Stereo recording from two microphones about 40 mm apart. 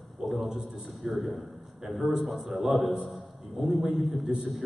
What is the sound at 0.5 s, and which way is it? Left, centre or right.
Speech, centre.